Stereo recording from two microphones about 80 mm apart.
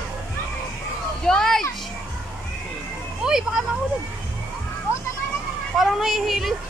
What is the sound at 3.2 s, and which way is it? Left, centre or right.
Vehicle, centre.